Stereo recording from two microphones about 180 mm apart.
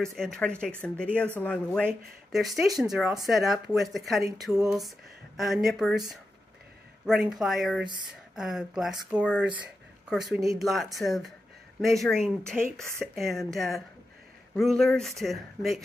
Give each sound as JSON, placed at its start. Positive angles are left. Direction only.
{"t": 0.1, "sound": "speech", "side_deg": 5}
{"t": 7.1, "sound": "speech", "side_deg": 0}
{"t": 10.6, "sound": "speech", "side_deg": 0}